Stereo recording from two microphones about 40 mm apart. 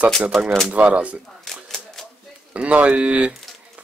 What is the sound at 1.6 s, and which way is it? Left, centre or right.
Typewriter, centre.